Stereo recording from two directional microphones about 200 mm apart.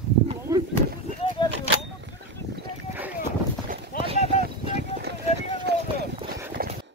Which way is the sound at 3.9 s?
45° left (ahead or behind).